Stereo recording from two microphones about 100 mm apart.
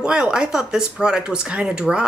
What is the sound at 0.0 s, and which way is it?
Speech, 10° right (ahead or behind).